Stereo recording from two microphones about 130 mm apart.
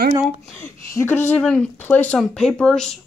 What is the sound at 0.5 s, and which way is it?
Speech, 20° left (ahead or behind).